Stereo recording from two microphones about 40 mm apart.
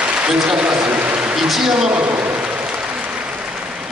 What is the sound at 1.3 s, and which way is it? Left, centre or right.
Speech, centre.